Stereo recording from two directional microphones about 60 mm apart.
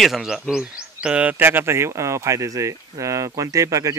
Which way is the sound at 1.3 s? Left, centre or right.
Right.